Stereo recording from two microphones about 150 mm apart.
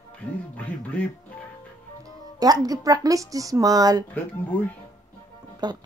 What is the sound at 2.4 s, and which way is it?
A woman's voice, 25° right (ahead or behind).